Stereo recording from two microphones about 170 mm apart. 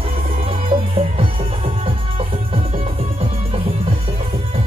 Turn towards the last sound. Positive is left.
turn(degrees=-35)  # may be behind; listen again after turning